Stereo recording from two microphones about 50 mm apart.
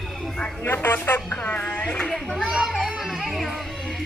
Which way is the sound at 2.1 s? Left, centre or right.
Centre.